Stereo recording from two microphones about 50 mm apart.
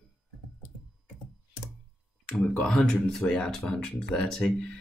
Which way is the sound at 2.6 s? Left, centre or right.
Centre.